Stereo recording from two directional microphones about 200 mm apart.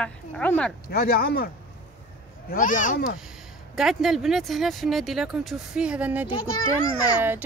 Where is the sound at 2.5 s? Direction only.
40° left (ahead or behind).